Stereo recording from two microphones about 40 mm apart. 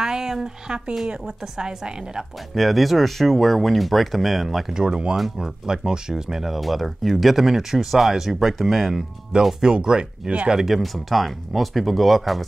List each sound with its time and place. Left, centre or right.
0.0 s a woman's voice: centre
2.5 s speech: centre
4.6 s speech: centre
5.1 s speech: centre
5.7 s a woman's voice: centre
6.4 s speech: centre
9.7 s speech: right
10.6 s speech: centre